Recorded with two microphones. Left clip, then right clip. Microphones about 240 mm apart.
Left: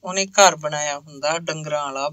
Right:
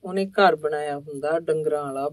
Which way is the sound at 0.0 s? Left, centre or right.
Left.